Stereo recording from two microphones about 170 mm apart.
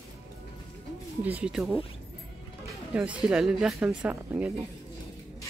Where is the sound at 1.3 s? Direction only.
5° right (ahead or behind).